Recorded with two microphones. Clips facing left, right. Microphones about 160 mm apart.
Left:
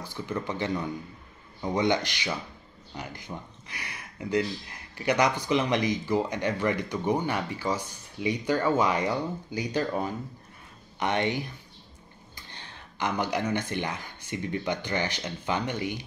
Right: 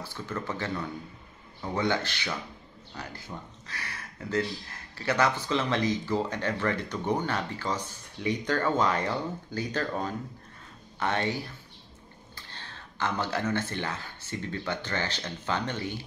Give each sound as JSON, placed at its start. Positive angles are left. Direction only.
{"t": 0.0, "sound": "speech", "side_deg": 15}